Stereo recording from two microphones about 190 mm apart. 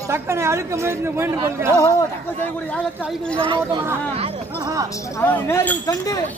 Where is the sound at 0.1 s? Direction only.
15° right (ahead or behind).